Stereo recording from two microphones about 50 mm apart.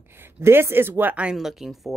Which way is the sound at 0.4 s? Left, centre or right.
Right.